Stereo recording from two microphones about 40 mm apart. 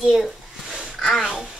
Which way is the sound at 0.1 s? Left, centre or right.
Centre.